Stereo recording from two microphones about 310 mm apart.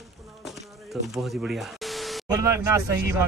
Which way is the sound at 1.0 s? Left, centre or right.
Centre.